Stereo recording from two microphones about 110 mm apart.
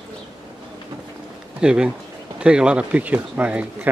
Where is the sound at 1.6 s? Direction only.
5° right (ahead or behind).